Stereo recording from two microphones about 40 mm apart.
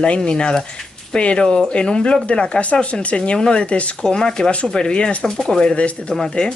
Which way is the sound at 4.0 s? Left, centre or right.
Centre.